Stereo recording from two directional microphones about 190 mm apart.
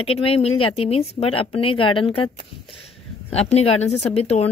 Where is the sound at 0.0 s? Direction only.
30° left (ahead or behind).